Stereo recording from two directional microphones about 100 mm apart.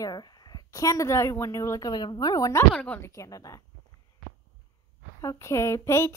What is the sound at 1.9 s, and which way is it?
Speech, 45° left (ahead or behind).